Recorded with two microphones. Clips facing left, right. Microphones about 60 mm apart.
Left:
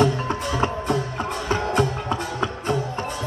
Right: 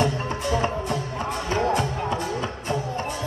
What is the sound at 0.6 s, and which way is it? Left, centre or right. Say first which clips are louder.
Music: left 2 dB; left.